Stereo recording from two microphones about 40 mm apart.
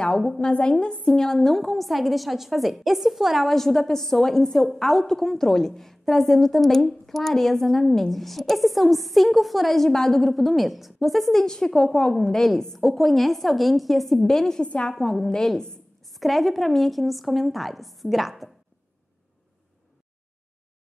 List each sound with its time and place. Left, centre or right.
0.0 s a woman's voice: centre
1.0 s a woman's voice: centre
3.4 s a woman's voice: centre
11.4 s a woman's voice: centre
14.6 s a woman's voice: left
15.0 s a woman's voice: centre